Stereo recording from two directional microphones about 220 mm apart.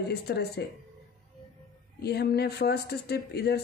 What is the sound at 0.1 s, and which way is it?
Speech, 50° left (ahead or behind).